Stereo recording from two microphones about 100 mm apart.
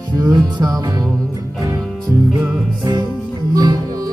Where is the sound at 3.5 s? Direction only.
45° right (ahead or behind).